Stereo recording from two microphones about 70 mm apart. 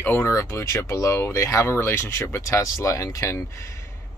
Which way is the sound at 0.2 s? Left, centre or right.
Left.